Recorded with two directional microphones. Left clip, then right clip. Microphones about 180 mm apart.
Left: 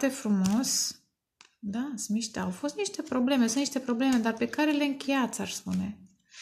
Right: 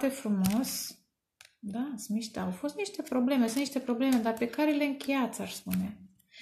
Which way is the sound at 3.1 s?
50° left (ahead or behind).